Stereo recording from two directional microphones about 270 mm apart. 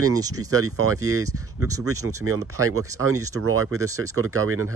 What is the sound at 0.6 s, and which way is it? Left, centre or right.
Speech, right.